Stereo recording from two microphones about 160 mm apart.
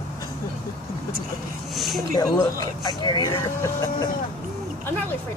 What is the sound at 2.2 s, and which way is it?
Speech, 25° left (ahead or behind).